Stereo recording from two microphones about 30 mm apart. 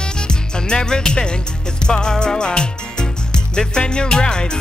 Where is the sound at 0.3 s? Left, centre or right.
Left.